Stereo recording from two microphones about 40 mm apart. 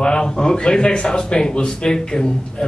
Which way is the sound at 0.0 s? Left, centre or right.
Centre.